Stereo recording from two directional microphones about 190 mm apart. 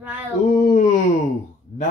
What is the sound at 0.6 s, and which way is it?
Speech, 45° left (ahead or behind).